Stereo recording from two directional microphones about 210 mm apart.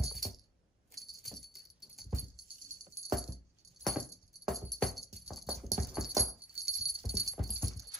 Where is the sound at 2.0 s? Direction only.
30° right (ahead or behind).